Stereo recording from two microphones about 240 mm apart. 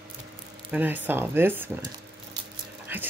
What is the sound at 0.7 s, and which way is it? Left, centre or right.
A woman's voice, centre.